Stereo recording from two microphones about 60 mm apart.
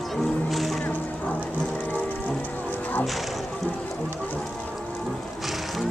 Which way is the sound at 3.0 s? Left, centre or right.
Centre.